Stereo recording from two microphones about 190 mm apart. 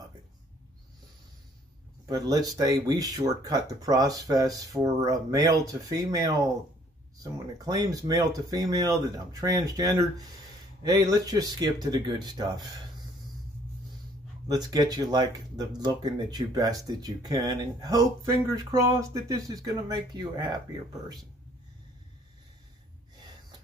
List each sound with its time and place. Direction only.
2.0 s speech: 20° right (ahead or behind)
7.5 s speech: 20° right (ahead or behind)
14.5 s speech: 20° right (ahead or behind)